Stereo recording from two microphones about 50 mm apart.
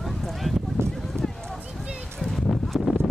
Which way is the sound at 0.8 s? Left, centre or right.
Right.